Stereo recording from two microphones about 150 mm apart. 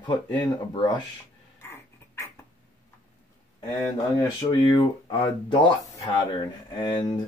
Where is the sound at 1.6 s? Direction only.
20° left (ahead or behind).